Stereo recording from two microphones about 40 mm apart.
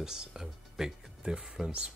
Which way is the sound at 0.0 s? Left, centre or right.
Centre.